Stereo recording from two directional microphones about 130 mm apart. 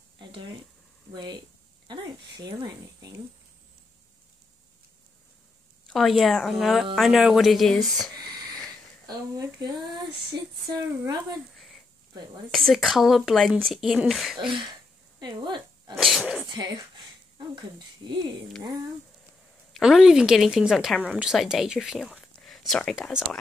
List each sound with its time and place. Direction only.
0.2 s a sound: 40° right (ahead or behind)
1.1 s speech: 35° right (ahead or behind)
1.9 s a sound: 35° right (ahead or behind)
5.9 s speech: centre (ahead or behind)
9.0 s speech: 30° right (ahead or behind)
11.5 s a sound: centre (ahead or behind)
12.4 s speech: centre (ahead or behind)
15.1 s speech: 35° right (ahead or behind)
16.0 s speech: centre (ahead or behind)
16.4 s speech: 35° right (ahead or behind)
19.7 s speech: 5° right (ahead or behind)